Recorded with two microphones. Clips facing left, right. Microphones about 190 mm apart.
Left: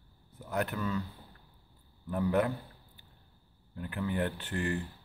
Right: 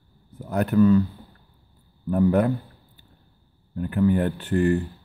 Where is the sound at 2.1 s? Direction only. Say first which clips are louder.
Right 9 dB; 45° right (ahead or behind).